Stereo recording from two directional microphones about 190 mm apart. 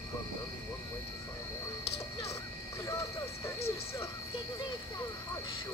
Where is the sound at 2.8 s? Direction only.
15° left (ahead or behind).